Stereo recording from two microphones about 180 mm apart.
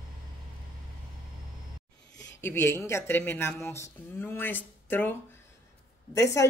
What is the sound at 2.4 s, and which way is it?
Speech, 15° left (ahead or behind).